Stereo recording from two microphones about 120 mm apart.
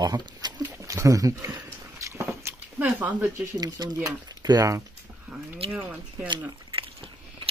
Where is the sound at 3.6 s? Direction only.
35° right (ahead or behind).